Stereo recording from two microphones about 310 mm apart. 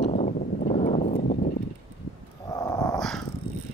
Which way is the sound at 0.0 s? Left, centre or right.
Left.